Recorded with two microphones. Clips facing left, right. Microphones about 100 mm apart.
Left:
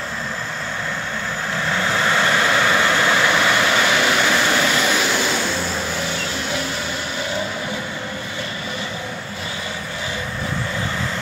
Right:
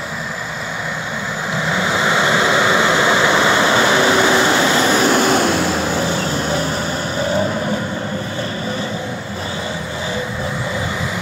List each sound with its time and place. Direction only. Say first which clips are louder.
1.7 s vehicle: right 2 dB; 15° right (ahead or behind); by 5.7 s 65° right (ahead or behind)
7.2 s vehicle: right 8 dB; 40° right (ahead or behind)